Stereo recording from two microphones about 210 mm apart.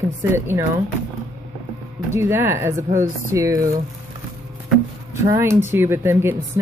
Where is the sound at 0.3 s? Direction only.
10° right (ahead or behind).